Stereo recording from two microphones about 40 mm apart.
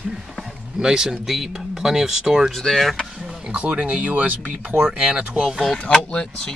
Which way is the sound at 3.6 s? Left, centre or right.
Right.